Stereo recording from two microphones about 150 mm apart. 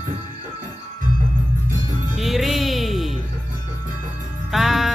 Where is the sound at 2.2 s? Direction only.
Centre (ahead or behind).